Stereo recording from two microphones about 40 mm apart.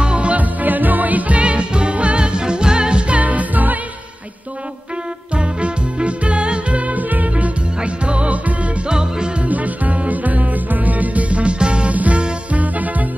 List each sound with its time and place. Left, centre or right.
0.0 s music: right
3.2 s music: right
5.3 s music: right
8.8 s music: right
9.5 s music: right
11.9 s music: right